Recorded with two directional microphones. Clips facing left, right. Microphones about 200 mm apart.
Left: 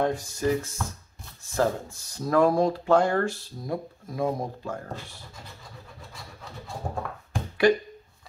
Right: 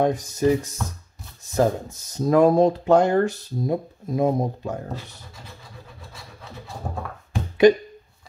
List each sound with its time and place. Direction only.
0.0 s speech: 20° right (ahead or behind)
7.6 s speech: 20° right (ahead or behind)